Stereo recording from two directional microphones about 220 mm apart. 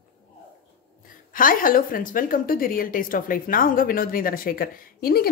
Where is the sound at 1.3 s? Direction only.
40° left (ahead or behind).